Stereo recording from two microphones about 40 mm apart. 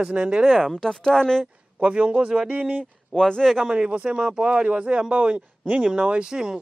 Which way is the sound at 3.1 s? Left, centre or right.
Centre.